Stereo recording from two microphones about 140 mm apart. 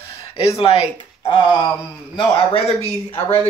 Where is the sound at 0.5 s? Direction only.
45° left (ahead or behind).